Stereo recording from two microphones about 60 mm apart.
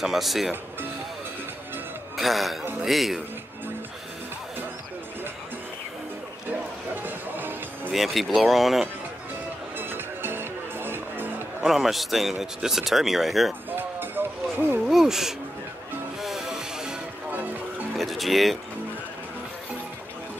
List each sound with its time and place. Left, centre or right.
0.0 s speech: centre
2.1 s speech: centre
7.0 s music: right
7.9 s speech: centre
9.8 s music: right
11.6 s speech: centre
13.7 s music: right
14.9 s speech: centre
16.2 s music: centre
17.9 s music: centre